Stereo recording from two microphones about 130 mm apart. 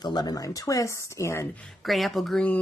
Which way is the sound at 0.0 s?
30° left (ahead or behind).